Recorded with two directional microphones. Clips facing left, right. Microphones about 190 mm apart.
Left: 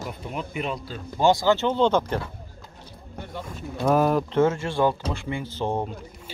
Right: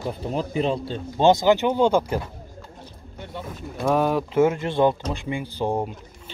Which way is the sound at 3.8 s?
Centre (ahead or behind).